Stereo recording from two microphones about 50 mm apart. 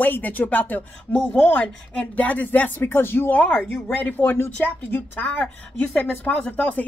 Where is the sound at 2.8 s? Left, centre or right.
Left.